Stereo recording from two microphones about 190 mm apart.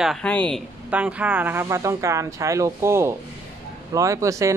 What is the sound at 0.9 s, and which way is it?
Speech, 5° right (ahead or behind).